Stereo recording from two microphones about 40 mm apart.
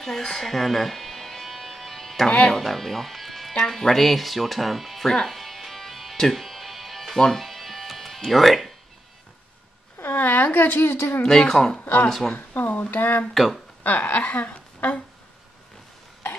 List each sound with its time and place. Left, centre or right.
0.2 s music: centre
2.5 s speech: centre
5.2 s music: centre
8.2 s speech: centre
10.0 s speech: left
11.2 s speech: centre
11.8 s speech: left
13.3 s speech: centre
13.8 s speech: left
14.2 s speech: left